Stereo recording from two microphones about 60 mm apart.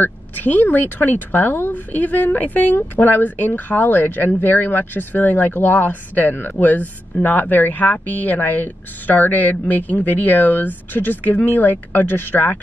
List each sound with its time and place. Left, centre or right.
0.0 s a woman's voice: left